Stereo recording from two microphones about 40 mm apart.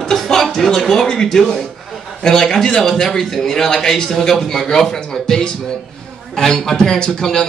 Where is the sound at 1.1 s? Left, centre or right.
Centre.